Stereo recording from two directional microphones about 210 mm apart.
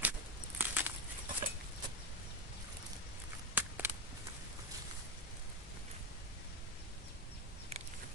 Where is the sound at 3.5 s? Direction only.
10° right (ahead or behind).